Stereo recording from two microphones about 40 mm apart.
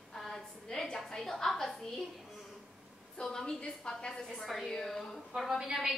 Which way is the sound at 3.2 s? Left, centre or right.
Centre.